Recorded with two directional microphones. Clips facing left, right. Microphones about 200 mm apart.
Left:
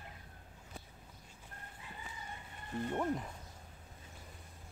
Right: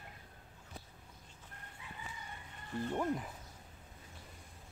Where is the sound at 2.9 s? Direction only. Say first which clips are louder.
Even; centre (ahead or behind).